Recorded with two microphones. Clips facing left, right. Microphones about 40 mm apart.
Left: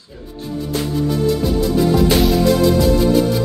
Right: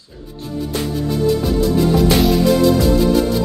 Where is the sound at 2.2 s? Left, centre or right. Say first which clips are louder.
Right 1 dB; centre.